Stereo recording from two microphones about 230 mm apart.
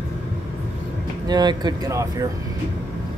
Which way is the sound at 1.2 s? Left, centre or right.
Centre.